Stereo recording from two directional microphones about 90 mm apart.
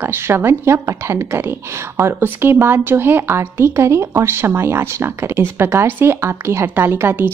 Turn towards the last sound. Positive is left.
turn(degrees=-20)  # may be behind; listen again after turning